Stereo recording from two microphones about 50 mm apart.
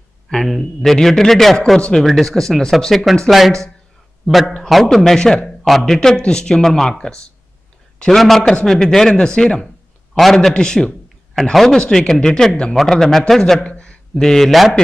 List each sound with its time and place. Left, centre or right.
0.5 s speech: centre
1.8 s speech: centre
2.0 s speech: centre
8.2 s speech: centre
8.6 s speech: centre
10.5 s speech: centre
13.7 s a sound: centre
14.2 s speech: centre